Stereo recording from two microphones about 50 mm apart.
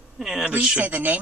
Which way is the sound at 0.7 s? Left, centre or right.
Right.